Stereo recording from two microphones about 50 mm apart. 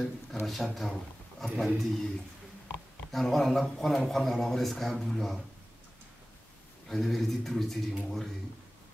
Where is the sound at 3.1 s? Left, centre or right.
Centre.